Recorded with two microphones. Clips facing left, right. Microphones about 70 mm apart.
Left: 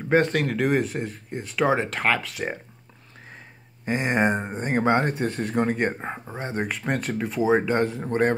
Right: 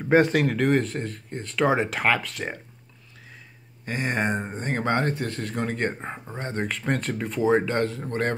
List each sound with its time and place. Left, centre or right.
0.1 s speech: centre
3.8 s speech: centre